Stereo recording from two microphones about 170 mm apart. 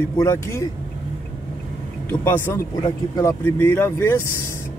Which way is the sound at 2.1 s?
15° left (ahead or behind).